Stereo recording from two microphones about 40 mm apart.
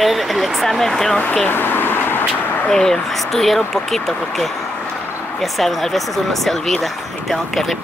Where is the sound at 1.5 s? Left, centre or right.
Left.